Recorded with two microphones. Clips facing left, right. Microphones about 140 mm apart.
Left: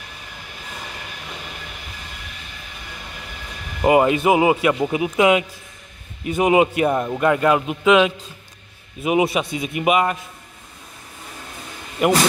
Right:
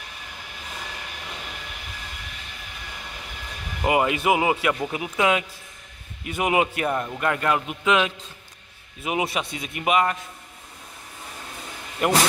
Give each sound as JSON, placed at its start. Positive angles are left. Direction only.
{"t": 3.8, "sound": "a man's voice", "side_deg": 30}
{"t": 12.0, "sound": "a man's voice", "side_deg": 10}